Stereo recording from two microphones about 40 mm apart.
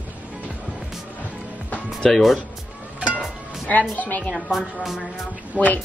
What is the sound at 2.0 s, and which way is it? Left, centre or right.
Speech, centre.